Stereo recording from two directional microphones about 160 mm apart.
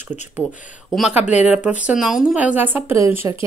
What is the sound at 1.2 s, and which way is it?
Speech, 45° left (ahead or behind).